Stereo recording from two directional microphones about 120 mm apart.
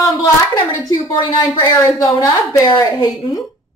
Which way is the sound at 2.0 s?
25° left (ahead or behind).